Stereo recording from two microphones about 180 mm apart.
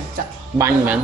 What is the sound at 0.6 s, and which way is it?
Speech, 10° right (ahead or behind).